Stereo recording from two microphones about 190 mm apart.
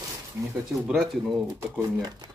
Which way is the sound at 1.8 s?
20° right (ahead or behind).